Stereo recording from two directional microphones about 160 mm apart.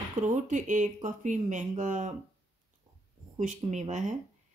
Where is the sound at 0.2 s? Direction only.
50° right (ahead or behind).